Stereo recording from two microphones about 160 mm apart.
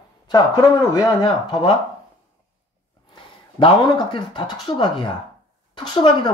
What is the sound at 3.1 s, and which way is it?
Speech, 30° left (ahead or behind).